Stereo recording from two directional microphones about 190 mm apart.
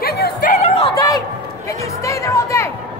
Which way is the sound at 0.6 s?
30° left (ahead or behind).